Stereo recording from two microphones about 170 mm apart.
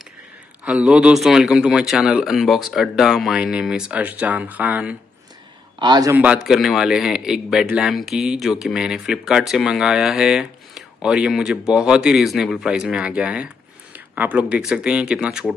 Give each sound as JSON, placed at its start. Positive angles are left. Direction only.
{"t": 0.7, "sound": "speech", "side_deg": -5}
{"t": 5.8, "sound": "a man's voice", "side_deg": -25}
{"t": 6.1, "sound": "speech", "side_deg": -5}